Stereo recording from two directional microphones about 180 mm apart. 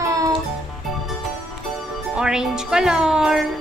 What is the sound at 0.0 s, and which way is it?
Music, 20° right (ahead or behind).